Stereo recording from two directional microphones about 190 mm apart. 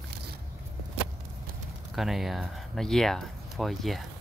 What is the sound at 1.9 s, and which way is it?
Speech, centre (ahead or behind).